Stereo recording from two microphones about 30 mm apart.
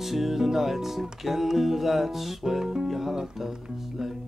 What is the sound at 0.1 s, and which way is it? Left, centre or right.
Music, centre.